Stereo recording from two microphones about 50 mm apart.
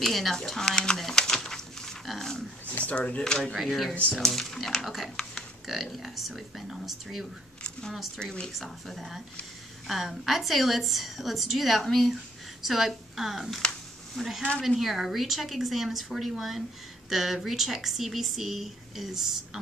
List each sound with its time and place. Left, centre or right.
0.0 s speech: centre
2.6 s speech: left
3.5 s speech: centre
8.2 s speech: centre
8.5 s speech: centre